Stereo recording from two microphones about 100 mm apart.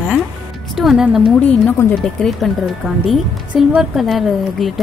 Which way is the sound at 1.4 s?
20° left (ahead or behind).